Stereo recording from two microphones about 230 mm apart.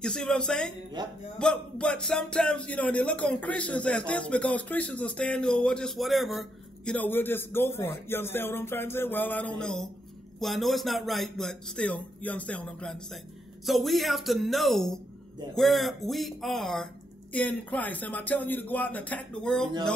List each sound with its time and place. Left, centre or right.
0.0 s speech: centre
1.0 s speech: centre
1.4 s speech: centre
8.1 s a sound: centre
10.4 s speech: centre